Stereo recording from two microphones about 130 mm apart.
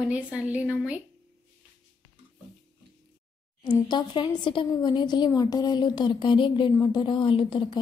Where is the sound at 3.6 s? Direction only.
35° left (ahead or behind).